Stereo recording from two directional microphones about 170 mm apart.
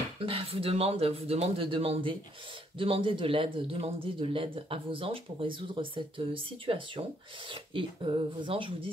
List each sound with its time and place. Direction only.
0.2 s speech: 35° right (ahead or behind)